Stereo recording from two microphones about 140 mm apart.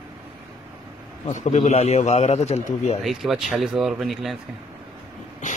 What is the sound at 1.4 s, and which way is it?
A man's voice, 55° left (ahead or behind).